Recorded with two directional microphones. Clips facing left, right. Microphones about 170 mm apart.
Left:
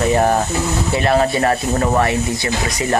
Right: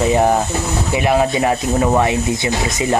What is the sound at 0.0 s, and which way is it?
Speech, 15° right (ahead or behind).